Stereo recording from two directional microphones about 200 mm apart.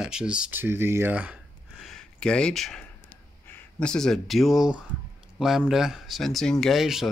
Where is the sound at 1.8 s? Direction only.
Centre (ahead or behind).